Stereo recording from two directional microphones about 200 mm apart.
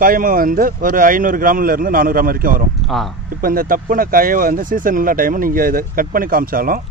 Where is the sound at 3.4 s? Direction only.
45° right (ahead or behind).